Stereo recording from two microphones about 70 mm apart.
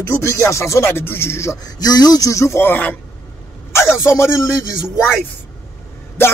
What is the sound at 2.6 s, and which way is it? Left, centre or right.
Speech, left.